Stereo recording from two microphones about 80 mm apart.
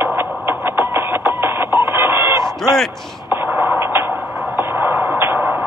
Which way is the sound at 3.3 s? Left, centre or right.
Right.